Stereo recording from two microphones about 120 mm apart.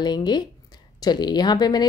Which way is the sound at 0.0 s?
35° left (ahead or behind).